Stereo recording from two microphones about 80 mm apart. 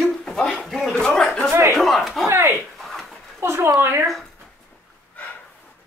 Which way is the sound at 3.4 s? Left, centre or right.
Right.